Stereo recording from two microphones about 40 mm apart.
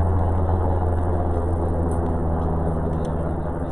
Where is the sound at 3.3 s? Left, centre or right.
Centre.